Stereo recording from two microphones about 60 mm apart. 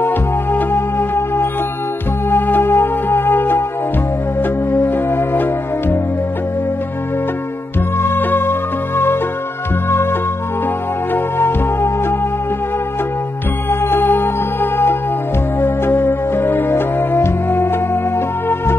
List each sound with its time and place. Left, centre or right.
0.0 s music: left
8.0 s music: left
11.3 s music: left
13.7 s music: left